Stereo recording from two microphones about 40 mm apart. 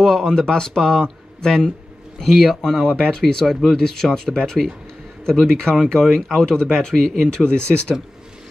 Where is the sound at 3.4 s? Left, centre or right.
Centre.